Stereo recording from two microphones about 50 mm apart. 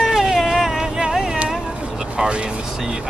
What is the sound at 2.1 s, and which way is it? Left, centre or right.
Speech, centre.